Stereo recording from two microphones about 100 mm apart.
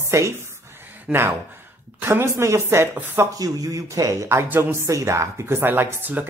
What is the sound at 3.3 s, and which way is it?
Speech, 35° right (ahead or behind).